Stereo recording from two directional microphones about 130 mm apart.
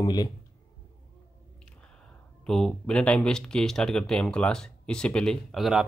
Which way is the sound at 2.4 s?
5° left (ahead or behind).